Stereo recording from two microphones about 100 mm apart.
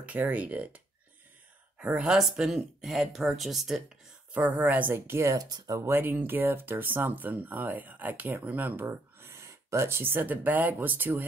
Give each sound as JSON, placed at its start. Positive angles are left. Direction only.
{"t": 0.0, "sound": "speech", "side_deg": -15}
{"t": 4.3, "sound": "speech", "side_deg": -15}
{"t": 5.9, "sound": "speech", "side_deg": -20}